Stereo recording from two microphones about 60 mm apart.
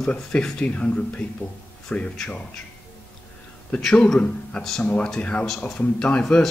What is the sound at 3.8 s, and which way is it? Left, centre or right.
Speech, centre.